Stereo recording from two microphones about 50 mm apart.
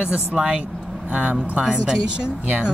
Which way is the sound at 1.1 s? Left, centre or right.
Right.